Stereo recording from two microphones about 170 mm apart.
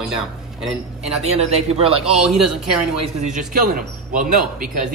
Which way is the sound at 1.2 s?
40° right (ahead or behind).